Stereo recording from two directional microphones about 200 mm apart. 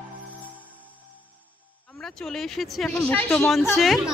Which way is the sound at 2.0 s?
Centre (ahead or behind).